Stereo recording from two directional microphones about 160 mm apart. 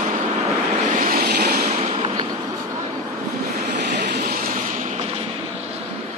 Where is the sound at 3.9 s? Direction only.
85° right; by 4.6 s 65° right (ahead or behind).